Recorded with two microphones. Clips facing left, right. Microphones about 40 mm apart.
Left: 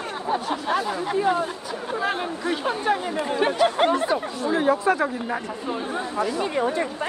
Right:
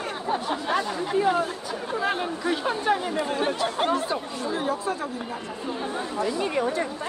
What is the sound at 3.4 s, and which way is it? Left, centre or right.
Speech, left.